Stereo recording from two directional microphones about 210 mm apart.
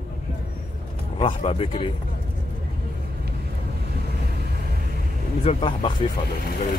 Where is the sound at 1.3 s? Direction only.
30° left (ahead or behind).